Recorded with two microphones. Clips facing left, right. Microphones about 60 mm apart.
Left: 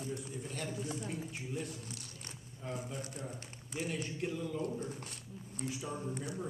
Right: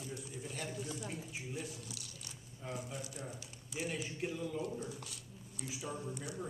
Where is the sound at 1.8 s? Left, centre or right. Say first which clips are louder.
Left 2 dB; left.